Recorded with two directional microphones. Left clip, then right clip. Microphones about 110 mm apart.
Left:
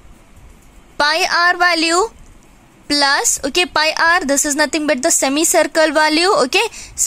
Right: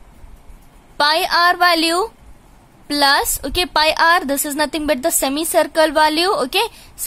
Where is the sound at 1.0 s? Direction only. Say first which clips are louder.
Even; 20° left (ahead or behind).